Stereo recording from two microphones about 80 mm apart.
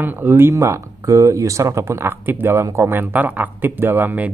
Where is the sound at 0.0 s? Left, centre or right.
Right.